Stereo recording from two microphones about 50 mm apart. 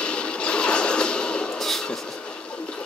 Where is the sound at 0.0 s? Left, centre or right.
Left.